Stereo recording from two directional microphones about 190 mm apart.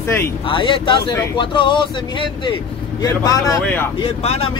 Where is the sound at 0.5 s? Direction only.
25° left (ahead or behind); by 3.9 s 10° left (ahead or behind).